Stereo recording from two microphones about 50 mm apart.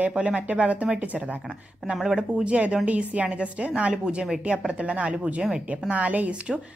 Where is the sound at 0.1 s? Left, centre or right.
Right.